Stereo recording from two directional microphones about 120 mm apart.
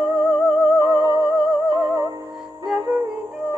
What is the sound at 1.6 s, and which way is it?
Music, 40° right (ahead or behind).